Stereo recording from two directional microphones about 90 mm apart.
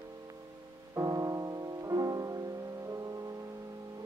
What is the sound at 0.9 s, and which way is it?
Music, 40° right (ahead or behind).